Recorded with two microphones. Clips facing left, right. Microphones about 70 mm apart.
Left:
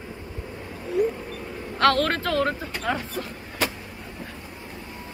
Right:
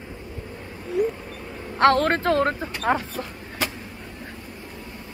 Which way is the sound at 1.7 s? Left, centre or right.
Right.